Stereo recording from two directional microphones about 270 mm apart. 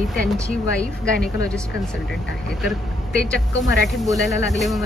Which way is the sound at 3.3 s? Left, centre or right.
Left.